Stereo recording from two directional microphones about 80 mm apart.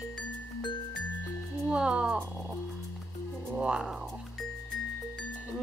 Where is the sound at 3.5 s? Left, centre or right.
Centre.